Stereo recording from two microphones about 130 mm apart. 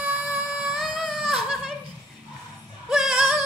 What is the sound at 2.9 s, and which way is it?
Music, 5° right (ahead or behind).